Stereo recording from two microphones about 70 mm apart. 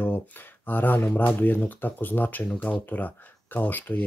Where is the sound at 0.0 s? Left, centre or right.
Left.